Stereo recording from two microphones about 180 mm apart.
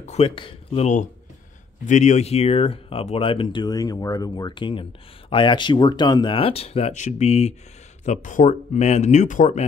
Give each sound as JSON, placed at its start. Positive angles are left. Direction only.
{"t": 0.0, "sound": "speech", "side_deg": 35}